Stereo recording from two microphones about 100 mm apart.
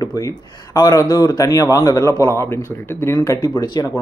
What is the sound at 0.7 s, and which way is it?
Speech, 35° left (ahead or behind).